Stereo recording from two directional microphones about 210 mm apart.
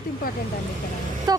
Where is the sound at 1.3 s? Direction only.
20° right (ahead or behind).